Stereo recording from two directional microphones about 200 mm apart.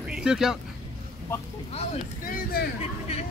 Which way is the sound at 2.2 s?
45° left (ahead or behind).